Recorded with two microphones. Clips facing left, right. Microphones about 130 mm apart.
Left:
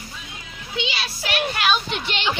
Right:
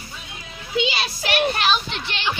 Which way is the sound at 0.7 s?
40° right (ahead or behind).